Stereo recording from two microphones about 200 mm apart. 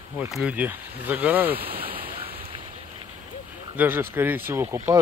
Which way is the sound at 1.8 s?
45° right (ahead or behind).